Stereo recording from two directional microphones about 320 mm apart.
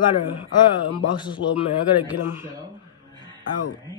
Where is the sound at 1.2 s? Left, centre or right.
Centre.